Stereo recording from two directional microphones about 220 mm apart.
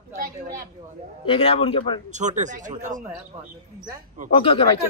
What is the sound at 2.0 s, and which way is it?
Speech, 35° right (ahead or behind).